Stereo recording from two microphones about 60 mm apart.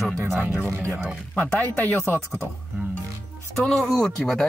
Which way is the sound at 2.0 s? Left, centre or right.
Left.